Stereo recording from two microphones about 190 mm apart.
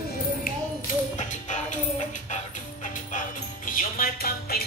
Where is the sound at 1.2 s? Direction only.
40° left (ahead or behind).